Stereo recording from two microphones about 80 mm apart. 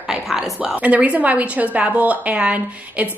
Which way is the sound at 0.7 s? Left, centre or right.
Centre.